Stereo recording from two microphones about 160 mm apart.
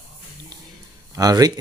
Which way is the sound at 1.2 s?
25° right (ahead or behind).